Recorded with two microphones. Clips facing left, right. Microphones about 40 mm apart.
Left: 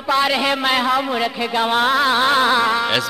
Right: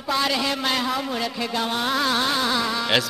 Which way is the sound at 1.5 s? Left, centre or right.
Left.